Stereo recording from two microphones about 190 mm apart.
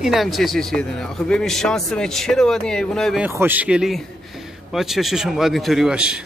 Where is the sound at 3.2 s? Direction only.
10° right (ahead or behind).